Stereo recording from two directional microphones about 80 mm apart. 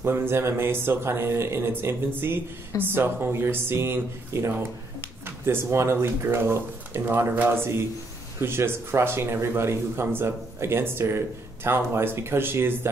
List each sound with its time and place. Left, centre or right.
0.0 s speech: right